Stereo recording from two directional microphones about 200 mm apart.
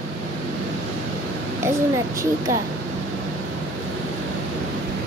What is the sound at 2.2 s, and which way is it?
Speech, 15° right (ahead or behind).